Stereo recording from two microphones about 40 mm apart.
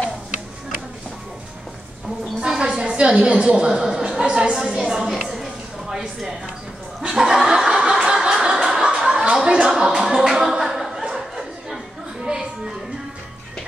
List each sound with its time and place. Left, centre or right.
2.5 s a sound: centre
2.9 s a woman's voice: right
4.8 s a woman's voice: centre
7.1 s chuckle: centre
8.8 s a sound: centre
10.0 s music: centre
10.3 s a woman's voice: centre
10.6 s a sound: centre
12.3 s music: centre